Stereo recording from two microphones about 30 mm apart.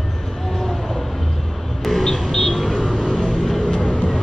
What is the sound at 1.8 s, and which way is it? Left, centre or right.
Vehicle, centre.